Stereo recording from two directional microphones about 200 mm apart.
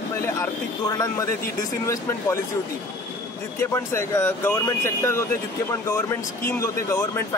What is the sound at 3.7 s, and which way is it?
Speech, 15° left (ahead or behind).